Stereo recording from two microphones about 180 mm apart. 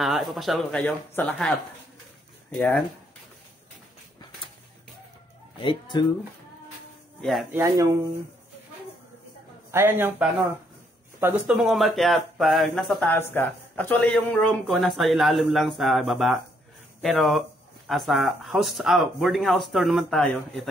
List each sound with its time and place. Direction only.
0.0 s speech: centre (ahead or behind)
5.6 s speech: 25° left (ahead or behind)
7.2 s speech: centre (ahead or behind)
7.5 s a man's voice: 15° right (ahead or behind)
9.7 s a man's voice: 10° right (ahead or behind)
11.5 s speech: centre (ahead or behind)
13.1 s speech: 10° left (ahead or behind)